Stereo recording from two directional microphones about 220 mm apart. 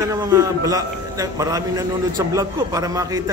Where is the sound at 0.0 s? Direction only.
15° right (ahead or behind).